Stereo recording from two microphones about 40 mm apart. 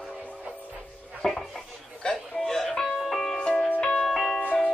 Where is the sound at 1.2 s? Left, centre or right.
Centre.